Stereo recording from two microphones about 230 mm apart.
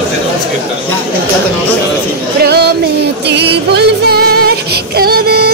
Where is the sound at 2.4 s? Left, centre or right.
Right.